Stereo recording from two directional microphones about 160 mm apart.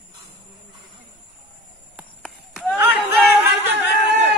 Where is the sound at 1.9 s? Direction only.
5° right (ahead or behind).